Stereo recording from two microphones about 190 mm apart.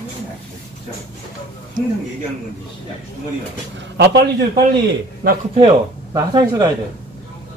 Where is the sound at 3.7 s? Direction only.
65° right (ahead or behind).